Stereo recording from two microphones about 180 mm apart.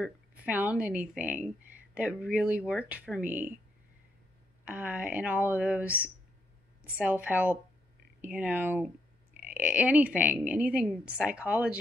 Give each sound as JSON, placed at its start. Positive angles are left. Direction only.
{"t": 0.0, "sound": "a woman's voice", "side_deg": -10}
{"t": 4.6, "sound": "a woman's voice", "side_deg": -5}